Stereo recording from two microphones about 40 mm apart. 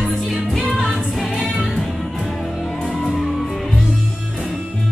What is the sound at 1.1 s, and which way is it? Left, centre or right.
Music, centre.